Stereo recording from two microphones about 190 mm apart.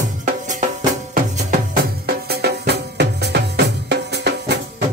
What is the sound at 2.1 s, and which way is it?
Music, 60° right (ahead or behind).